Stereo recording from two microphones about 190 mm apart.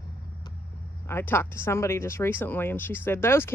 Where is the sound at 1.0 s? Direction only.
10° left (ahead or behind).